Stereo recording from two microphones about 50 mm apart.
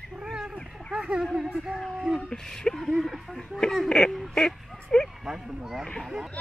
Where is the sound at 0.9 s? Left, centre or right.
Centre.